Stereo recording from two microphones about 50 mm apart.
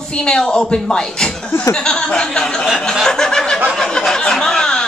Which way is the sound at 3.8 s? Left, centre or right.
Centre.